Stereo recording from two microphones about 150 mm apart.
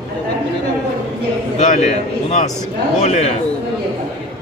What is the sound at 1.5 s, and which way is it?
Speech, 55° left (ahead or behind).